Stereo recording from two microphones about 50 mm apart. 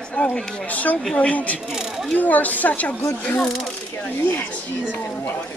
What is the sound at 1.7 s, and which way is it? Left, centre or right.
Speech, centre.